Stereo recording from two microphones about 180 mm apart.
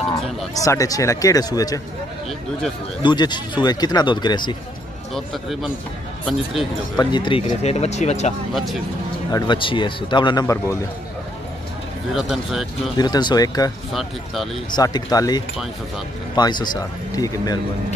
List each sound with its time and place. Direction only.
0.6 s speech: 20° left (ahead or behind)
3.0 s speech: 25° left (ahead or behind)
5.1 s speech: centre (ahead or behind)
7.0 s speech: 25° left (ahead or behind)
9.3 s speech: 25° left (ahead or behind)
12.1 s speech: centre (ahead or behind)
12.9 s speech: 25° left (ahead or behind)
13.9 s speech: centre (ahead or behind)
14.8 s speech: 20° left (ahead or behind)